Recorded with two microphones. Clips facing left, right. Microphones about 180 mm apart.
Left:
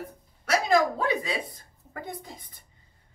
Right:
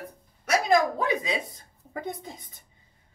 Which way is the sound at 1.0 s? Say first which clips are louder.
Even; 20° right (ahead or behind).